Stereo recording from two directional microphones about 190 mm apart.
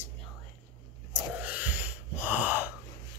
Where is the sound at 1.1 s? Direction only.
10° right (ahead or behind).